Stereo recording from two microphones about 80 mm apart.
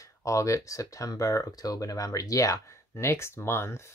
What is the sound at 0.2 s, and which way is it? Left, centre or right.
Speech, left.